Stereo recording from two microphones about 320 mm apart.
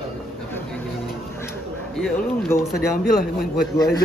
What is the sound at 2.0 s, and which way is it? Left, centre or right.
Speech, centre.